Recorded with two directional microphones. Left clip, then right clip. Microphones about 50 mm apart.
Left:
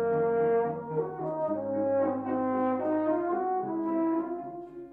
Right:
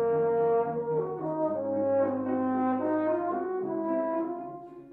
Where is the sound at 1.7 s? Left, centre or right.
Centre.